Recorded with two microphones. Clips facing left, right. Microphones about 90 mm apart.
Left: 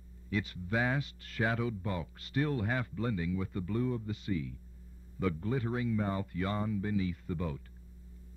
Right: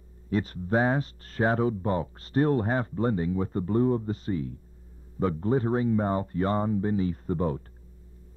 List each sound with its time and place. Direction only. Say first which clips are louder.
0.3 s speech: right 8 dB; 40° right (ahead or behind)